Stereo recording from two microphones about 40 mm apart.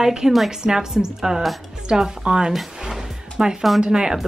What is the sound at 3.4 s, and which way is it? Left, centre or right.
Speech, centre.